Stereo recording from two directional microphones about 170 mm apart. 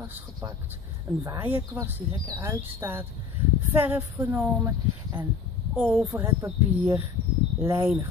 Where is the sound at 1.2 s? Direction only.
15° right (ahead or behind).